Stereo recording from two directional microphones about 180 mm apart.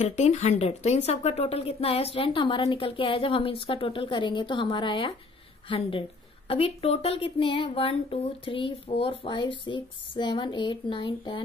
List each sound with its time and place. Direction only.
0.0 s a woman's voice: 40° left (ahead or behind)